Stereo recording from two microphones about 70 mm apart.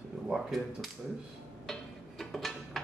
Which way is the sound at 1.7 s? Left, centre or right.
Centre.